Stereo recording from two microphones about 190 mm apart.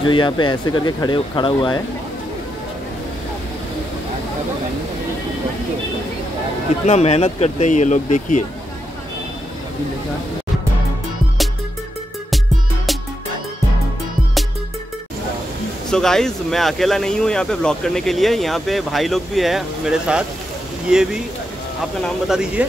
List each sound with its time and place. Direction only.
0.0 s speech: 25° left (ahead or behind)
6.9 s speech: 35° left (ahead or behind)
15.9 s speech: 5° left (ahead or behind)